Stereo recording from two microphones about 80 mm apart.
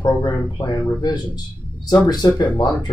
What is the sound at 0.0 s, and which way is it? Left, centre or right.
Speech, left.